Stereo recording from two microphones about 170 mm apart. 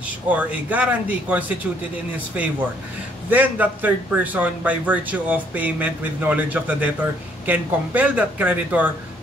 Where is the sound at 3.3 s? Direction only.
10° right (ahead or behind).